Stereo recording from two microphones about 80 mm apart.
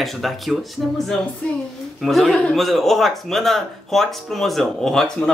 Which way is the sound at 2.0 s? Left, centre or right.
Centre.